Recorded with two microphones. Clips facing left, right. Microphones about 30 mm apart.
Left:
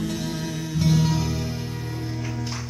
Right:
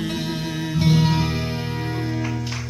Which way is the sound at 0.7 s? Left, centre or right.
Right.